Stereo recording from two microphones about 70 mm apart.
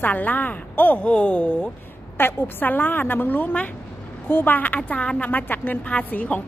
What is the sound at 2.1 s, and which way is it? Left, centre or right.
A woman's voice, left.